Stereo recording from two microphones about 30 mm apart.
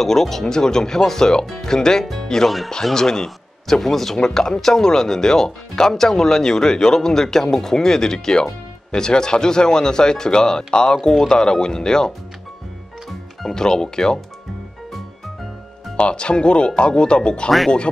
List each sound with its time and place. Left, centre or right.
0.0 s speech: centre
2.4 s speech: centre
2.8 s speech: centre
13.6 s speech: left
16.0 s speech: left